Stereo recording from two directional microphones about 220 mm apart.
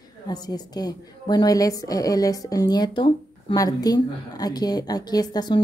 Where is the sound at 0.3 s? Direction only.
15° left (ahead or behind).